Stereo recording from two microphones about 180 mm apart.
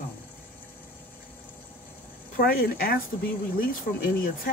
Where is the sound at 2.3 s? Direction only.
60° left (ahead or behind).